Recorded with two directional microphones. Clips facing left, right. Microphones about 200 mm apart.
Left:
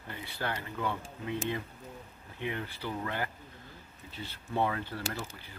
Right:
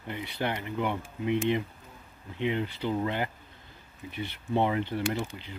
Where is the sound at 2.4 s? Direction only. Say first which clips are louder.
Right 7 dB; 20° right (ahead or behind).